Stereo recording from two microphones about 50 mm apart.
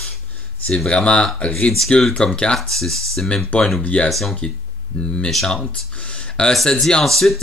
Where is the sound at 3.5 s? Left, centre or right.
Left.